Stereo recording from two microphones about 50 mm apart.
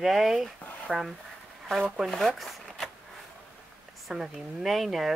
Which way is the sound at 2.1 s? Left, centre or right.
Centre.